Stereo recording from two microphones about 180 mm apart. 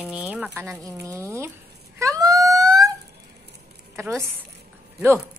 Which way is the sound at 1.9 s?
20° right (ahead or behind).